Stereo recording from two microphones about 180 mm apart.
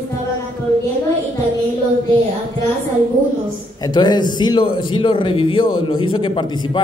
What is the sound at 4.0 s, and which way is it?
A man's voice, 25° left (ahead or behind).